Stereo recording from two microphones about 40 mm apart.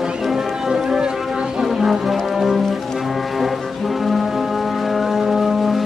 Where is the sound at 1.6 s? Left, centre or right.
Centre.